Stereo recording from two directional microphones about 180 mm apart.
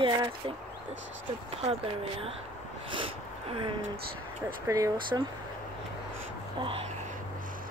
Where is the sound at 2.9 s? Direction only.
30° right (ahead or behind).